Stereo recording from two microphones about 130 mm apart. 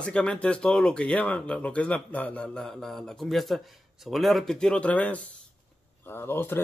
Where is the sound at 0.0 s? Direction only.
5° left (ahead or behind).